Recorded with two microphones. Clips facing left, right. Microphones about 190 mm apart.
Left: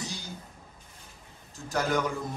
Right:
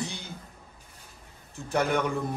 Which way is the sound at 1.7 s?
60° right (ahead or behind).